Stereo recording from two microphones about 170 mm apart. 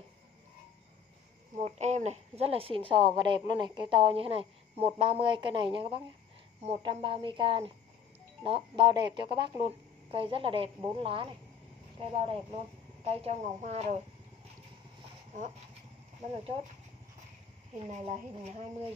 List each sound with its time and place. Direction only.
1.6 s a woman's voice: 40° right (ahead or behind)
17.7 s a woman's voice: 35° right (ahead or behind)